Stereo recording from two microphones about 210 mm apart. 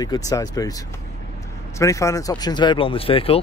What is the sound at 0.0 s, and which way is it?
Speech, 20° left (ahead or behind).